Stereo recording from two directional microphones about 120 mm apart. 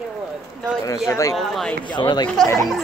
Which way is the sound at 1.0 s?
25° left (ahead or behind).